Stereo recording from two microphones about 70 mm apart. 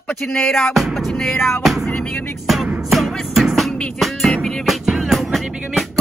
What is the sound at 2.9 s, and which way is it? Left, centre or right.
Music, centre.